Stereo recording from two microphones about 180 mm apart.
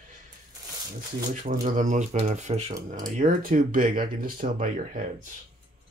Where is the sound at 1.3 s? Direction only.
45° right (ahead or behind).